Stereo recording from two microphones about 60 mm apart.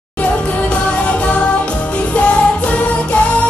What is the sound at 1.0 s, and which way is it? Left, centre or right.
Music, left.